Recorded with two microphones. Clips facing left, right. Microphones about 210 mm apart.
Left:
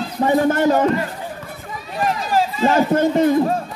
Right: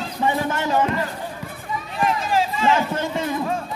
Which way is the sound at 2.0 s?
40° left (ahead or behind).